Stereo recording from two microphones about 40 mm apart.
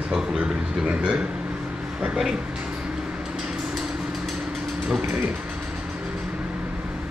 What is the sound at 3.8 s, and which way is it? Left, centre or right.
Vehicle, centre.